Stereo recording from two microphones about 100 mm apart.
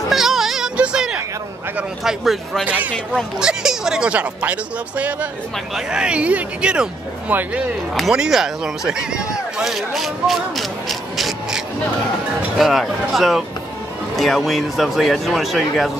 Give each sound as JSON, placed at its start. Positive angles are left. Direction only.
{"t": 0.1, "sound": "music", "side_deg": -5}
{"t": 2.0, "sound": "speech", "side_deg": 0}
{"t": 2.6, "sound": "speech", "side_deg": -15}